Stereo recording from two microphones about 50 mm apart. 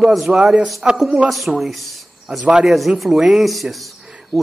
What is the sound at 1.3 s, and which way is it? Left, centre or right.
A man's voice, centre.